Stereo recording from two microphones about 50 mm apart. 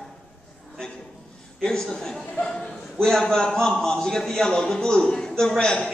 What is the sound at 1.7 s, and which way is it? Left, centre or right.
A man's voice, centre.